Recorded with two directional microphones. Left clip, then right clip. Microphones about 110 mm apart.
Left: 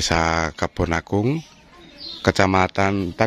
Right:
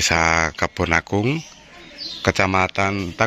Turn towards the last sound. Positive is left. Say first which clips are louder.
# even
turn(degrees=65)  # may be behind; listen again after turning